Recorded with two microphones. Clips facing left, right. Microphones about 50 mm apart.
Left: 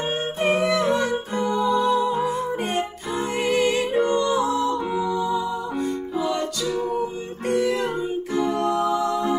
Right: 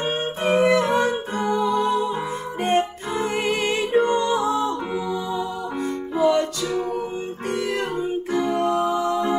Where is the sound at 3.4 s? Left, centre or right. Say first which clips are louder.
Left 6 dB; right.